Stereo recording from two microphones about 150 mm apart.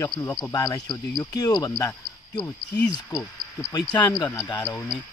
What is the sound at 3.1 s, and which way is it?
Speech, 20° left (ahead or behind).